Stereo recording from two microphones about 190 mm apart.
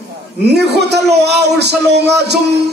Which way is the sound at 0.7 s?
60° right (ahead or behind).